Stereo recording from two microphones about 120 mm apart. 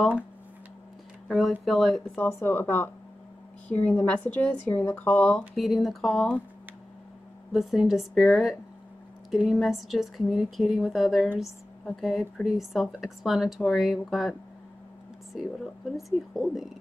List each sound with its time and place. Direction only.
1.3 s speech: centre (ahead or behind)
2.1 s speech: 15° left (ahead or behind)
5.6 s speech: centre (ahead or behind)
7.5 s speech: 5° right (ahead or behind)
15.3 s speech: centre (ahead or behind)